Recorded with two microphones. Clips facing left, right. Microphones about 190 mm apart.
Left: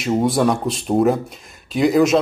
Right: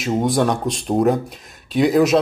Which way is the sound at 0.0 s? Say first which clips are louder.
Left 1 dB; centre (ahead or behind).